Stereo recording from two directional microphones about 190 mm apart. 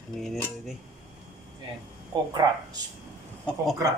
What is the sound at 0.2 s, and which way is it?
Speech, centre (ahead or behind).